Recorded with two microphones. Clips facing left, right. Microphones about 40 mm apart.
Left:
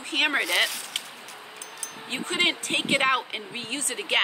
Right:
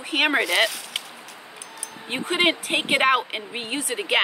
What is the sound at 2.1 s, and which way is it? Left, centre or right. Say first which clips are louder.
A woman's voice: right 4 dB; centre.